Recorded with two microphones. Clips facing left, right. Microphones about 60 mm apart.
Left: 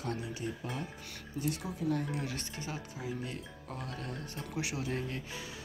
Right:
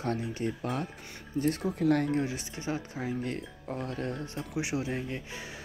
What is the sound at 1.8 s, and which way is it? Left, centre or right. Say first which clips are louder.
Speech: right 7 dB; right.